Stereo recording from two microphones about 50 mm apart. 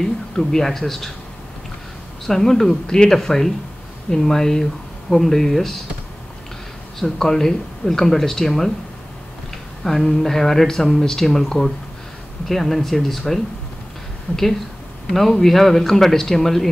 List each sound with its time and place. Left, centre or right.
0.0 s speech: centre
2.2 s speech: centre
7.0 s speech: centre
9.8 s speech: centre
14.3 s a woman's voice: left
15.0 s speech: centre